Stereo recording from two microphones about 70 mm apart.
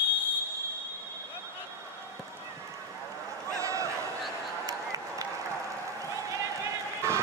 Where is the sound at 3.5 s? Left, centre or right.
Right.